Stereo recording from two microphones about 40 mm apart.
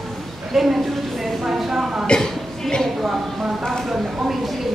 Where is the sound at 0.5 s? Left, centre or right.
Centre.